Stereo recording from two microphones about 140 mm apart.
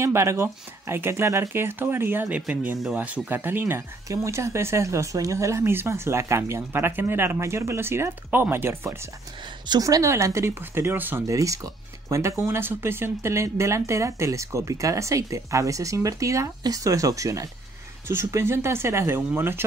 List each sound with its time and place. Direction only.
0.0 s speech: 20° right (ahead or behind)